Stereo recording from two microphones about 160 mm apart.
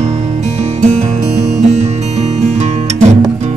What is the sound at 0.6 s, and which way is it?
Music, 45° right (ahead or behind).